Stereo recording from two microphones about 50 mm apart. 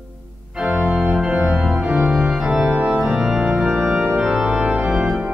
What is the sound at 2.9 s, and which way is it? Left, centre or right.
Organ, centre.